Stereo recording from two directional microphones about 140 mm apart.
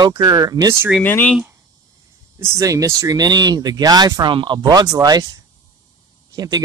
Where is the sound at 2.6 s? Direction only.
25° right (ahead or behind).